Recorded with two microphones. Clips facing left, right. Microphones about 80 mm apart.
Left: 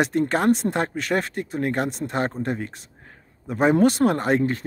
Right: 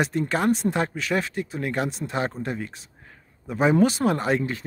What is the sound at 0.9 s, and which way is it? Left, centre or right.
Speech, left.